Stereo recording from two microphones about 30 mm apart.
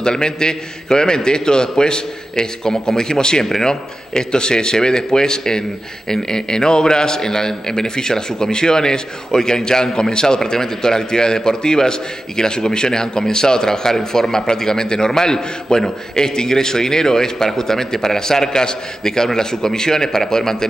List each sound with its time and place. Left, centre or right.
0.0 s a man's voice: left